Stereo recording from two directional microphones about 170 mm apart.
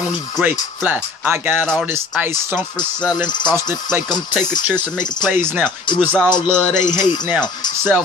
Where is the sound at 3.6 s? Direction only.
15° right (ahead or behind).